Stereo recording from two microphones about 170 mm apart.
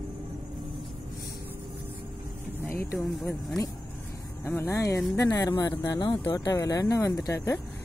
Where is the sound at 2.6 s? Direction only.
15° left (ahead or behind).